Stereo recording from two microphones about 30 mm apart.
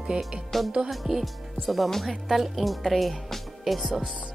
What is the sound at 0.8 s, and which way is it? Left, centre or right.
Speech, centre.